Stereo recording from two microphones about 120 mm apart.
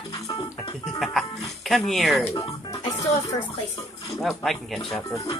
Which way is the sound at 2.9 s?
30° left (ahead or behind).